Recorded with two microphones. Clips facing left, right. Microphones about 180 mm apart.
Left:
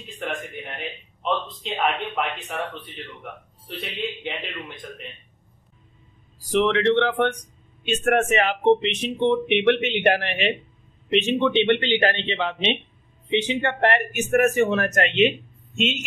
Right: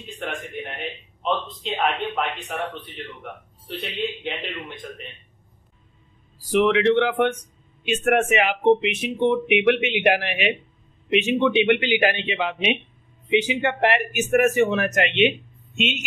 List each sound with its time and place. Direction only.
0.2 s speech: centre (ahead or behind)
3.6 s speech: centre (ahead or behind)
6.5 s a man's voice: 5° right (ahead or behind)